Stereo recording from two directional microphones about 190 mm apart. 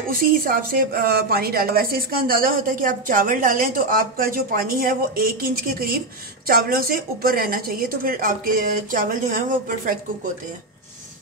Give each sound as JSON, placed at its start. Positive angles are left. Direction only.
{"t": 0.2, "sound": "a woman's voice", "side_deg": -50}